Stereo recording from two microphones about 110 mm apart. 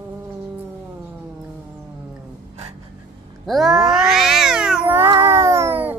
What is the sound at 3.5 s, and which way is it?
Cat, centre (ahead or behind).